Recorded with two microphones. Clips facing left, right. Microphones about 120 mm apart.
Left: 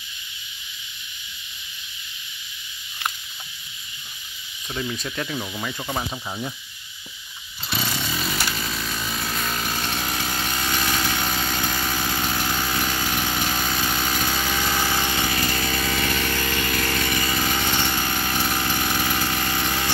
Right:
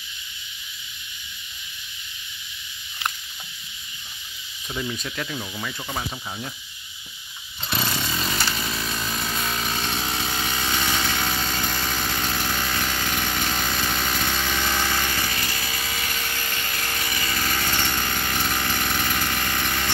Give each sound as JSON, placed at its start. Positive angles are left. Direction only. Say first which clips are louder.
{"t": 4.7, "sound": "speech", "louder": "left 1 dB", "side_deg": 0}
{"t": 7.7, "sound": "chainsaw", "louder": "even", "side_deg": 0}
{"t": 15.5, "sound": "power tool", "louder": "left 6 dB", "side_deg": 60}
{"t": 17.2, "sound": "chainsaw", "louder": "left 4 dB", "side_deg": 25}
{"t": 17.5, "sound": "vehicle", "louder": "left 2 dB", "side_deg": 15}